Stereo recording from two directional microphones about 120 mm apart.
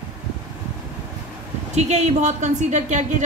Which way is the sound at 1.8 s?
65° right (ahead or behind).